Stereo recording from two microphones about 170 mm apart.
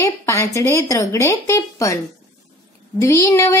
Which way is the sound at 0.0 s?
20° left (ahead or behind).